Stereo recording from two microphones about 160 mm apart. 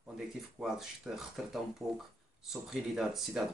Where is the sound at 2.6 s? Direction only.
Centre (ahead or behind).